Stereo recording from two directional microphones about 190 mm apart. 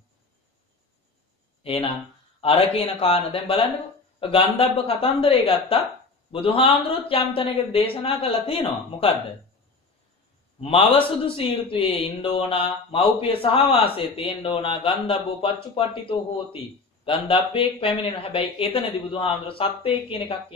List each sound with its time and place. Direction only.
1.6 s a man's voice: 30° left (ahead or behind)
10.6 s a man's voice: 30° left (ahead or behind)